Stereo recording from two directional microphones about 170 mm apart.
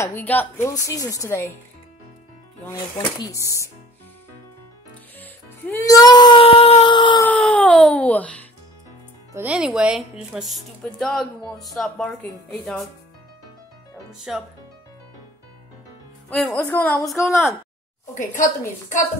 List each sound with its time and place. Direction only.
0.0 s a woman's voice: 10° left (ahead or behind)
2.6 s a woman's voice: 10° left (ahead or behind)
5.2 s music: 10° left (ahead or behind); by 7.2 s 25° left (ahead or behind)
7.2 s speech: 5° left (ahead or behind)
9.3 s speech: 10° right (ahead or behind)
14.1 s speech: centre (ahead or behind)
16.3 s a woman's voice: 5° left (ahead or behind)
18.3 s a woman's voice: 50° left (ahead or behind)